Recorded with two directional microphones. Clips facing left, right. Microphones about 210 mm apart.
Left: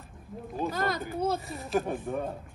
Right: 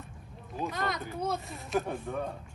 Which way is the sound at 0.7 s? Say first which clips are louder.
Left 4 dB; centre (ahead or behind).